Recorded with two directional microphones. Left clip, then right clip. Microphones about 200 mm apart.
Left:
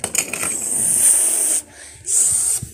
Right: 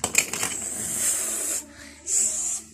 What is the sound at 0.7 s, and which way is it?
Vehicle, 10° left (ahead or behind).